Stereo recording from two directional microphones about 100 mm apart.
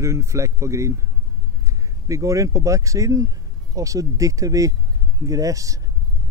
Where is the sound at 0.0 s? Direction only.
30° right (ahead or behind).